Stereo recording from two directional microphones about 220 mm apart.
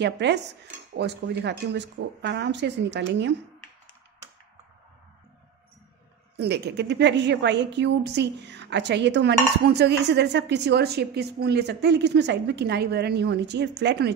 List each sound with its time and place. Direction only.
0.0 s a woman's voice: 50° right (ahead or behind)
6.3 s a woman's voice: 50° right (ahead or behind)